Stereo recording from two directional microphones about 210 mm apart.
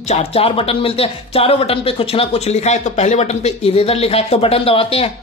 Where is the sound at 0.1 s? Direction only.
30° left (ahead or behind).